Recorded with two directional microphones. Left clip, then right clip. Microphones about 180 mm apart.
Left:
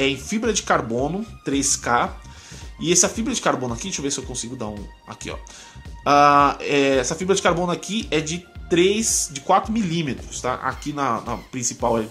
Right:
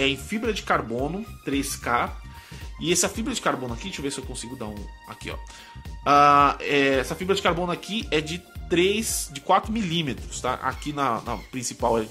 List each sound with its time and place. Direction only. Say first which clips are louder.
0.0 s speech: left 3 dB; 15° right (ahead or behind)